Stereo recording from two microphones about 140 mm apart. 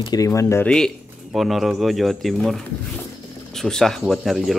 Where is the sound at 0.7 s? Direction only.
5° left (ahead or behind).